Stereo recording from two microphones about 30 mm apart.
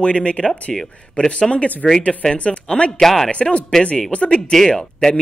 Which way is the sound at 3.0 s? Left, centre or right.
Centre.